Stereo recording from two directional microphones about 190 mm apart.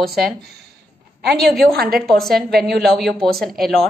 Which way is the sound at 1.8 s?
55° right (ahead or behind).